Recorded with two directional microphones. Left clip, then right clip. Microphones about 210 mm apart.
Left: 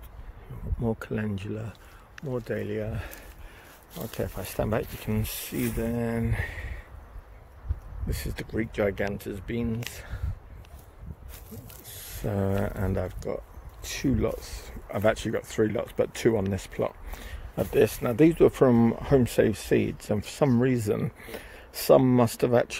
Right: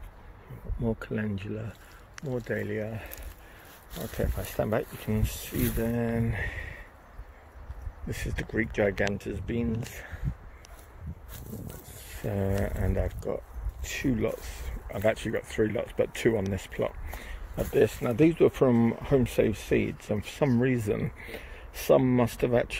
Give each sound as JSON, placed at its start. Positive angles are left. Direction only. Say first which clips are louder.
{"t": 0.8, "sound": "speech", "louder": "left 1 dB", "side_deg": 10}
{"t": 8.4, "sound": "speech", "louder": "right 1 dB", "side_deg": 5}
{"t": 12.2, "sound": "speech", "louder": "left 2 dB", "side_deg": 20}